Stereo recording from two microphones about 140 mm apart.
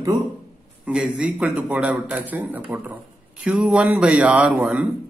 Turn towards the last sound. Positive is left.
turn(degrees=-10)  # may be behind; listen again after turning